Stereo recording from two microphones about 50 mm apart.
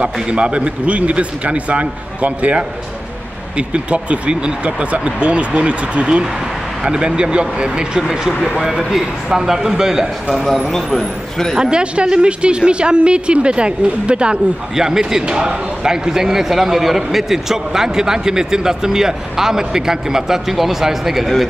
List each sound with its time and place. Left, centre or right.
0.0 s a man's voice: right
10.7 s speech: centre
11.5 s a man's voice: centre